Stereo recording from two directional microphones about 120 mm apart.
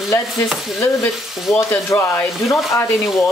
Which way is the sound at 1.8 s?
20° left (ahead or behind).